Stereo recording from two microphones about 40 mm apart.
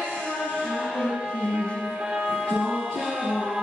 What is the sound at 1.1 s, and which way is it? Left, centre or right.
Music, centre.